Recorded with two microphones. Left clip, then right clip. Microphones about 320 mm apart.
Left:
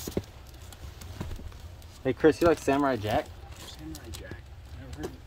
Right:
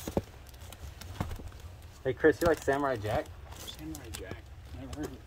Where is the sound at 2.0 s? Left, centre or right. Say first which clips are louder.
Left 3 dB; left.